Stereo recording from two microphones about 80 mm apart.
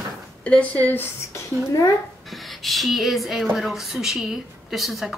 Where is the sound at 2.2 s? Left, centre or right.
Centre.